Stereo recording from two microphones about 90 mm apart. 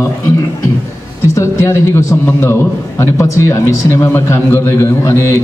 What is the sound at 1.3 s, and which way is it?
A man's voice, 30° left (ahead or behind).